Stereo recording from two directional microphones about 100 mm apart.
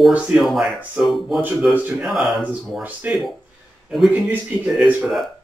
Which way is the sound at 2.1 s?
5° right (ahead or behind).